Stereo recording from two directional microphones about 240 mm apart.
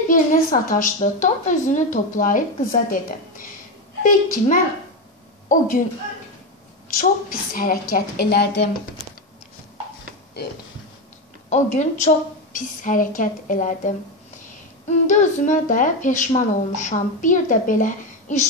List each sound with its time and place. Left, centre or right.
0.1 s speech: left
6.9 s speech: left
11.5 s a woman's voice: left